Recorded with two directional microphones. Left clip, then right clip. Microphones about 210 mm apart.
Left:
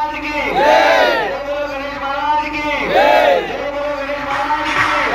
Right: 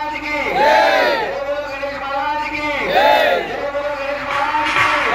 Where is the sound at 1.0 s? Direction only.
35° left (ahead or behind).